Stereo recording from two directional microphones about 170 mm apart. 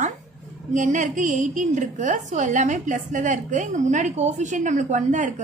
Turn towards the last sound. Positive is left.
turn(degrees=-45)  # may be behind; listen again after turning